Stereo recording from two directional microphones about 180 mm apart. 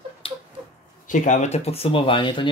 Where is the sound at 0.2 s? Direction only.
30° left (ahead or behind).